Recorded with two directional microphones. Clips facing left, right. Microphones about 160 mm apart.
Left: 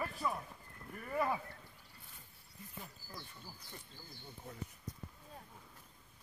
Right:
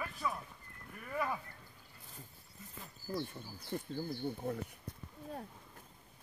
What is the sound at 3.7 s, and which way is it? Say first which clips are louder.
Speech: right 15 dB; 65° right (ahead or behind).